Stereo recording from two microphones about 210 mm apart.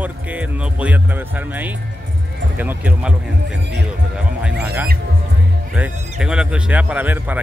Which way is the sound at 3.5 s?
55° right (ahead or behind).